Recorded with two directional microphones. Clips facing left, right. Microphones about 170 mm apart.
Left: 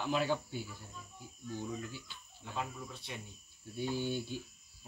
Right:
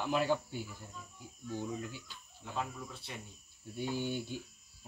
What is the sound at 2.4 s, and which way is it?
Speech, centre (ahead or behind).